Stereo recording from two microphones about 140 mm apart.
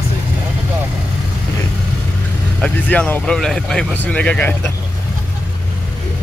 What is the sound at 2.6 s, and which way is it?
Speech, 10° left (ahead or behind).